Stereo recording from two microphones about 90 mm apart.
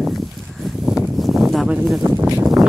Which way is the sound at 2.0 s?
30° right (ahead or behind).